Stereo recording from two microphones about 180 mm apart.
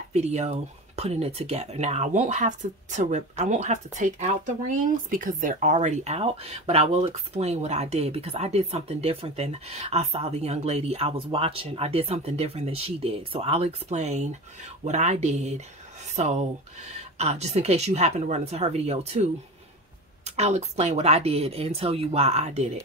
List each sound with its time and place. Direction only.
0.1 s speech: 35° right (ahead or behind)
20.2 s speech: 40° right (ahead or behind)